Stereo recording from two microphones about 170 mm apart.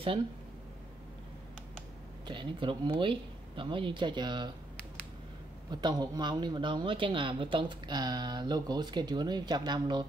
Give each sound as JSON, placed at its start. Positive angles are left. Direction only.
{"t": 2.2, "sound": "speech", "side_deg": -30}
{"t": 5.7, "sound": "speech", "side_deg": -25}